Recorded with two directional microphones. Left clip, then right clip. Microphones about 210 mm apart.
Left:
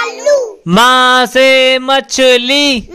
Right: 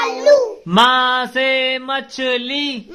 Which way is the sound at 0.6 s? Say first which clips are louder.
Left 5 dB; 55° left (ahead or behind).